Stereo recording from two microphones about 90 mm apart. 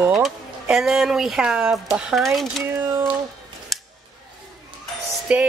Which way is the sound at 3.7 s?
Centre (ahead or behind).